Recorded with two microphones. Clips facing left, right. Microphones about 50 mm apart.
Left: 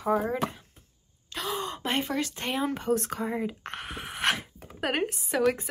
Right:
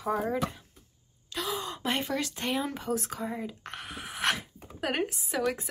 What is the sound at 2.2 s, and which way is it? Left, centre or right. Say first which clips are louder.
Speech: left 2 dB; centre.